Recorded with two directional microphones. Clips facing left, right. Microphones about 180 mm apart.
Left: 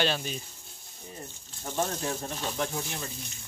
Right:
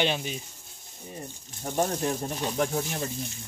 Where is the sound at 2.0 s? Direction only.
15° right (ahead or behind).